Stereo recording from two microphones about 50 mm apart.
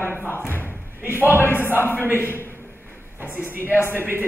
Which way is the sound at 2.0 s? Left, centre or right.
Right.